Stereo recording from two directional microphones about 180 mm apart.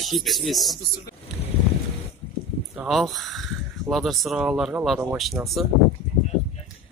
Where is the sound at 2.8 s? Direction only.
Centre (ahead or behind).